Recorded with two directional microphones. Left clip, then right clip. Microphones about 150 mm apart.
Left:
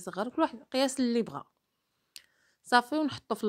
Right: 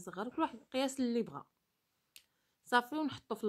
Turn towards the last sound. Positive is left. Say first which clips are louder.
# left 7 dB
turn(degrees=25)  # may be behind; listen again after turning